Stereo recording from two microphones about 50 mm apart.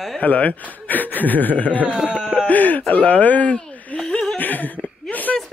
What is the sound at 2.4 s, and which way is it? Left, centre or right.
Speech, left.